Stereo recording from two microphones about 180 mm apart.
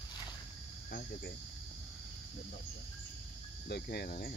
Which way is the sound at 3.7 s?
65° left (ahead or behind).